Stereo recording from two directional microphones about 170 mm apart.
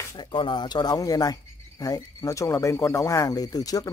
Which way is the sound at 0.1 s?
25° left (ahead or behind).